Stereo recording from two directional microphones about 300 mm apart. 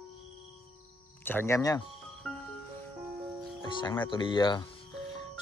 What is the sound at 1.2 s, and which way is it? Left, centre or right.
Speech, centre.